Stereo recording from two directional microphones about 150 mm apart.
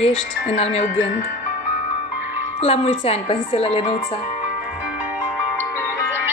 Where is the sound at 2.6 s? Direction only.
40° left (ahead or behind).